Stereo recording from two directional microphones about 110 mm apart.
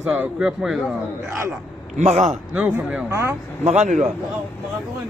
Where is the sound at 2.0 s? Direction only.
90° right.